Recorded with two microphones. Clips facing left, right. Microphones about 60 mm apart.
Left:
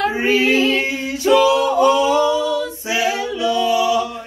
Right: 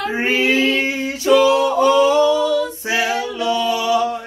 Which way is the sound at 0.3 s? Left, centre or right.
Right.